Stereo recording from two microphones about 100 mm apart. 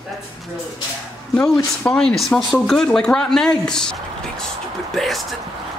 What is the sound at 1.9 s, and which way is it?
Speech, 5° left (ahead or behind).